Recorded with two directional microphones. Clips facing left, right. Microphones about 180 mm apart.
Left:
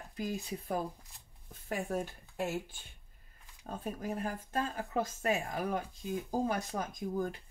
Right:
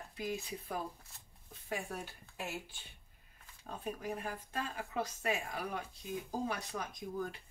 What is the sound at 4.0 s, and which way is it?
Speech, 40° left (ahead or behind).